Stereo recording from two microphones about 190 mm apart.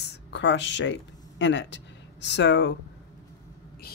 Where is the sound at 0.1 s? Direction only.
70° left (ahead or behind).